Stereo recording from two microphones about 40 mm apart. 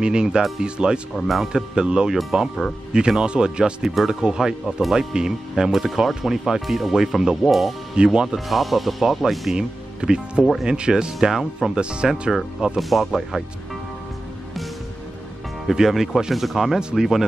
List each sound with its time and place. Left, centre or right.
0.0 s speech: centre
1.1 s speech: centre
1.5 s speech: centre
3.9 s speech: centre
5.7 s speech: centre
7.9 s speech: right
8.5 s speech: centre
9.5 s speech: centre
11.7 s speech: right
12.7 s speech: centre
15.6 s speech: centre